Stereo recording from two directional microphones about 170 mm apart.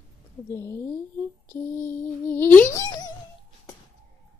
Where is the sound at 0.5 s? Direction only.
15° left (ahead or behind).